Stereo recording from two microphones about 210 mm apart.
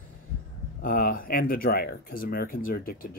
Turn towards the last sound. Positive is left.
turn(degrees=45)  # may be behind; listen again after turning